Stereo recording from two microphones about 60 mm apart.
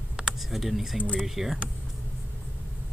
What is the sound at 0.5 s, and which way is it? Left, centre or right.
Speech, centre.